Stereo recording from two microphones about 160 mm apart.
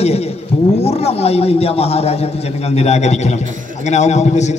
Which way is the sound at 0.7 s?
40° left (ahead or behind).